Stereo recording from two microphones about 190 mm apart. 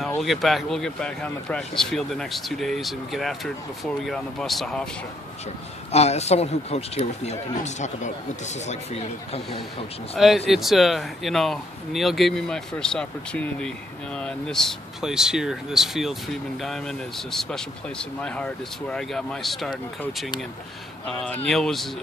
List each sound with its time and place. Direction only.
0.2 s speech: centre (ahead or behind)
5.9 s speech: 35° left (ahead or behind)
10.1 s speech: centre (ahead or behind)